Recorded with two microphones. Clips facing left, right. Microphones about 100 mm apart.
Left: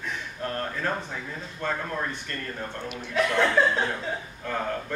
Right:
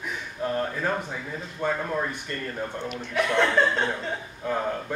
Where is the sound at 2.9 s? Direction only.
Centre (ahead or behind).